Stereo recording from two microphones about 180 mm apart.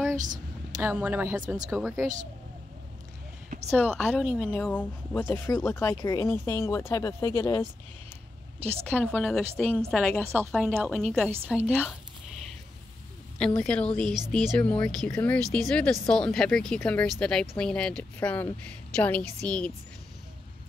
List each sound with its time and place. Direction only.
0.2 s a sound: 45° right (ahead or behind)
0.7 s speech: 10° right (ahead or behind)
3.4 s a sound: 40° right (ahead or behind)
3.7 s speech: 5° left (ahead or behind)
8.5 s a woman's voice: 35° right (ahead or behind)
8.8 s speech: 10° left (ahead or behind)
10.2 s speech: 15° right (ahead or behind)
10.5 s speech: centre (ahead or behind)
13.6 s speech: 5° left (ahead or behind)